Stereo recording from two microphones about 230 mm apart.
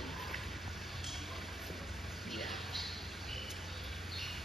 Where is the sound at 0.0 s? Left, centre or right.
Centre.